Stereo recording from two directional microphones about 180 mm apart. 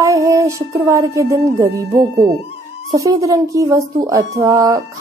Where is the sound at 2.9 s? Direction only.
20° right (ahead or behind).